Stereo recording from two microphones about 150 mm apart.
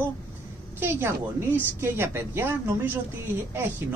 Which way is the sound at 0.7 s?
15° right (ahead or behind).